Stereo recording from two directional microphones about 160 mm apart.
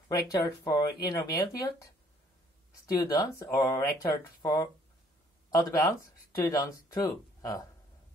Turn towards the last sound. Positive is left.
turn(degrees=20)  # may be behind; listen again after turning